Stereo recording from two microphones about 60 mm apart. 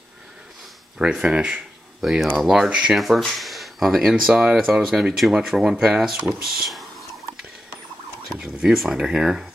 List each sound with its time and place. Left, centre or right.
0.9 s speech: centre
2.7 s speech: centre
3.0 s speech: centre
4.1 s speech: centre
8.4 s speech: centre